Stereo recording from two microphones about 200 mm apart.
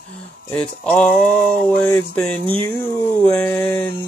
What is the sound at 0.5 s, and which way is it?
Speech, 5° left (ahead or behind).